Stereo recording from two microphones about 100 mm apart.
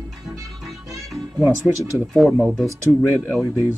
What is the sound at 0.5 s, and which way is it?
Music, centre (ahead or behind).